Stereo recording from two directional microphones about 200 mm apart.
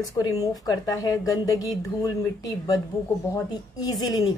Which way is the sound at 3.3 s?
20° left (ahead or behind).